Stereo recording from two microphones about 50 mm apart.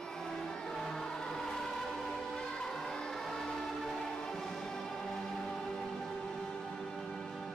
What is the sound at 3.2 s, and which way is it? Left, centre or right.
Music, centre.